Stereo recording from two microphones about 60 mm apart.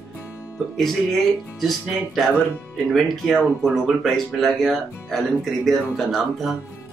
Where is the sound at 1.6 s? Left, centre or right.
Centre.